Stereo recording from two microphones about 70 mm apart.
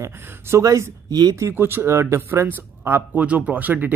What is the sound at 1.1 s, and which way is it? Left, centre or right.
Speech, right.